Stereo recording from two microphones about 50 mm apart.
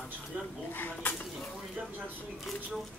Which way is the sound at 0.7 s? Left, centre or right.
Left.